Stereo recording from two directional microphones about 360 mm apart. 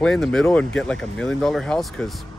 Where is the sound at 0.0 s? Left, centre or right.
Centre.